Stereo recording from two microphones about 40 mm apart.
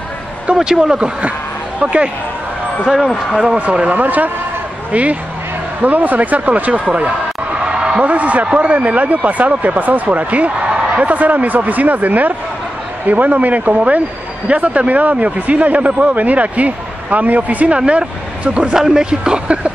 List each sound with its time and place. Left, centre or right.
0.6 s speech: centre
1.8 s speech: right
3.5 s a man's voice: right
5.8 s a man's voice: right
7.5 s a sound: right
8.0 s a man's voice: right
18.8 s speech: centre